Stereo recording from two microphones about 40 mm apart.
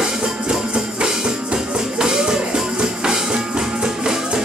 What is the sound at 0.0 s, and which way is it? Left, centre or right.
Music, centre.